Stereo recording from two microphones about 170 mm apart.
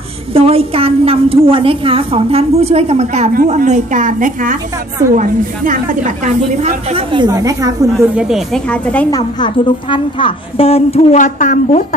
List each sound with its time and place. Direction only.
0.3 s a woman's voice: 35° right (ahead or behind)
8.2 s speech: centre (ahead or behind)
9.1 s a woman's voice: 30° left (ahead or behind); by 11.8 s 45° left (ahead or behind)